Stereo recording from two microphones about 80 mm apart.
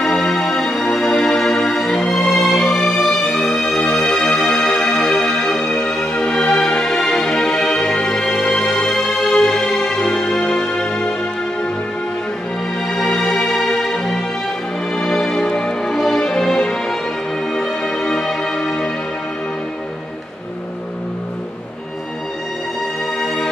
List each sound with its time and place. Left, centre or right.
0.0 s music: centre
12.8 s music: centre
23.1 s music: centre